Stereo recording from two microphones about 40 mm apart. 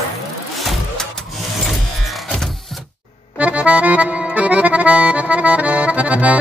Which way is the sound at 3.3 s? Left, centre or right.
Right.